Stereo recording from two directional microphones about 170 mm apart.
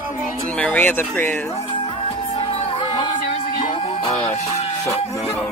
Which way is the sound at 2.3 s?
35° left (ahead or behind).